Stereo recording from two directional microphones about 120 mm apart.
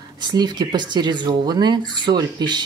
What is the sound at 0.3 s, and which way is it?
Speech, 35° right (ahead or behind).